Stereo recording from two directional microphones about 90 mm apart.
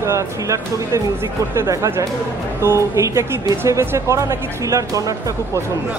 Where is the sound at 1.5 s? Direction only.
35° right (ahead or behind).